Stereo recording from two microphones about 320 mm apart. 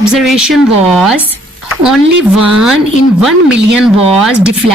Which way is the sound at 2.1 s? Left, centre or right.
Right.